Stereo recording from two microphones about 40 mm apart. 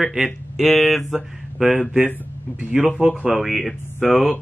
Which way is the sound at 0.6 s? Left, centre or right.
Centre.